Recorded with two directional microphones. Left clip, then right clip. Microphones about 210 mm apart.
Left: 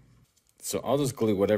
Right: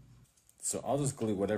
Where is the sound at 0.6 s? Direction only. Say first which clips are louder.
Left 6 dB; 50° left (ahead or behind).